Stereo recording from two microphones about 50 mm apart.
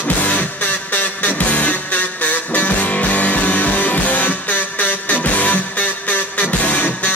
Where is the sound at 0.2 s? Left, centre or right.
Left.